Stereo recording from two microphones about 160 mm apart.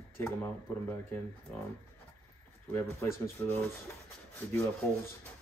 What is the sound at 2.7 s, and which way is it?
Speech, 15° left (ahead or behind).